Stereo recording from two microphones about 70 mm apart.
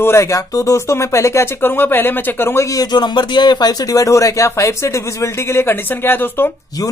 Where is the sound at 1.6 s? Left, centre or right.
Left.